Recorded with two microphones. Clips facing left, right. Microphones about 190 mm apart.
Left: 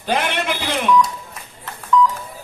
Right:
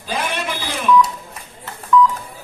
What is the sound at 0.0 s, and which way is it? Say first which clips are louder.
Telephone: left 3 dB; 70° left (ahead or behind).